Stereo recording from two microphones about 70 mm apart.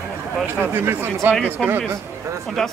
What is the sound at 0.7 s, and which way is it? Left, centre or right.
A man's voice, right.